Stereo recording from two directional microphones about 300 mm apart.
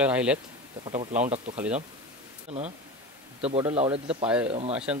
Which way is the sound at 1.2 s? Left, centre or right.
Right.